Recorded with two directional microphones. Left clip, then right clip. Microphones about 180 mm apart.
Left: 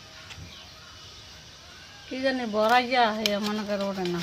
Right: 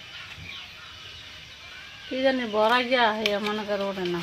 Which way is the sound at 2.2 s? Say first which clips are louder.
Right 3 dB; 40° right (ahead or behind).